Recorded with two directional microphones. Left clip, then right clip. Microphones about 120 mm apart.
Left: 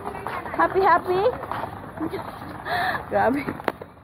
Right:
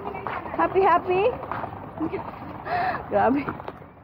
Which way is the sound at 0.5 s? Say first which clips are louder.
Left 1 dB; 50° right (ahead or behind).